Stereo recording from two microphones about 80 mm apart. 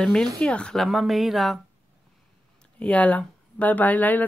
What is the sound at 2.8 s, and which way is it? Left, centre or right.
Speech, centre.